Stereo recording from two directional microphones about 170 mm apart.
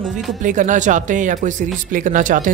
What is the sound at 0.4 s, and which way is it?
Speech, 45° right (ahead or behind).